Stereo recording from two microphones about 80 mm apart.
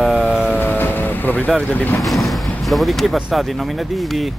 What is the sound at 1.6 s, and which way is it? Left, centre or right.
Speech, centre.